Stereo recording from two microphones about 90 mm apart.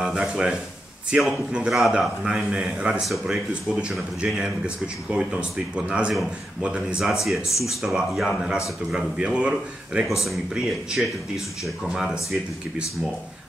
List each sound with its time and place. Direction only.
0.0 s a man's voice: 5° right (ahead or behind)
7.1 s speech: centre (ahead or behind)
7.4 s speech: 35° left (ahead or behind)
7.8 s a man's voice: centre (ahead or behind)